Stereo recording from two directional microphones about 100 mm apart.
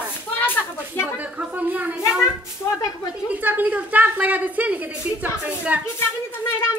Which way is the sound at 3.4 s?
15° right (ahead or behind).